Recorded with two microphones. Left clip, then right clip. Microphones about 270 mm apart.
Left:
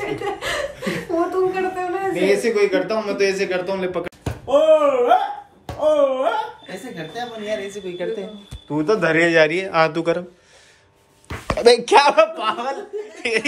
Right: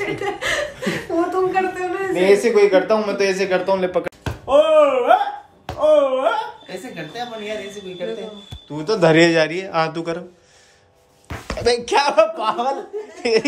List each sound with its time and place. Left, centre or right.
0.0 s chuckle: centre
0.7 s a sound: centre
1.3 s a sound: centre
2.1 s speech: centre
8.6 s speech: centre
9.0 s a man's voice: right
9.3 s speech: centre
11.4 s speech: centre
12.4 s a man's voice: centre